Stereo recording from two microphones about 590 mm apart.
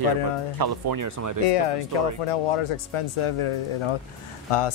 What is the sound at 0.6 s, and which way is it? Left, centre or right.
Speech, right.